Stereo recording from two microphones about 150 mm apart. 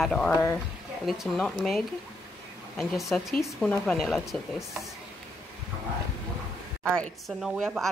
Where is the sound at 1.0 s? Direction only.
Centre (ahead or behind).